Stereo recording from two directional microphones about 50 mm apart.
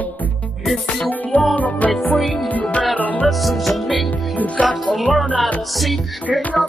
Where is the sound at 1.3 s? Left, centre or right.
Left.